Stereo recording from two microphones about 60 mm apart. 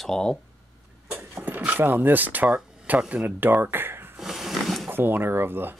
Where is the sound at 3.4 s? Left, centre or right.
Right.